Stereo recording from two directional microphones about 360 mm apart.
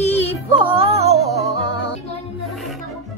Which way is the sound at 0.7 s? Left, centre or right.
Centre.